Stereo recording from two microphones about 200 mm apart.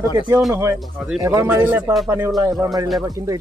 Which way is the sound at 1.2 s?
15° right (ahead or behind).